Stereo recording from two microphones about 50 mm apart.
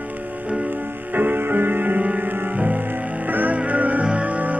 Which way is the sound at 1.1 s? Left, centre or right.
Right.